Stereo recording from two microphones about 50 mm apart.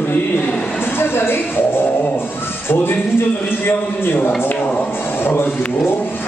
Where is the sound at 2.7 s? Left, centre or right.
Left.